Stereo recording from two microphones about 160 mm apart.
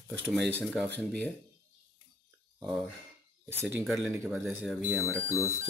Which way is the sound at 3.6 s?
15° right (ahead or behind).